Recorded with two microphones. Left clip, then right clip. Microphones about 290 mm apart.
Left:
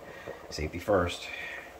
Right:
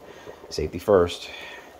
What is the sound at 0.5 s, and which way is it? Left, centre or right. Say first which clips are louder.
Speech: right 8 dB; right.